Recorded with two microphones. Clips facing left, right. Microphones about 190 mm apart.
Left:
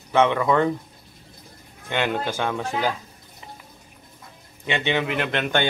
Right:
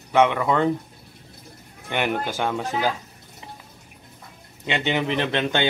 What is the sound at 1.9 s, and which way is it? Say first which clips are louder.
Speech: even; 15° right (ahead or behind).